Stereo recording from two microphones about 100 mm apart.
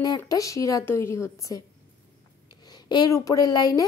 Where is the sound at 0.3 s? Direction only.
35° left (ahead or behind).